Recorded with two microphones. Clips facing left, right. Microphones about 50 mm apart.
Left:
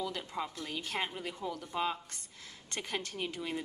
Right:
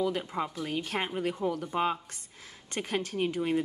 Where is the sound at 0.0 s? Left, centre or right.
Centre.